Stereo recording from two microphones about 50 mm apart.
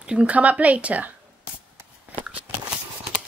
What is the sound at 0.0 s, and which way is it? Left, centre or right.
Speech, right.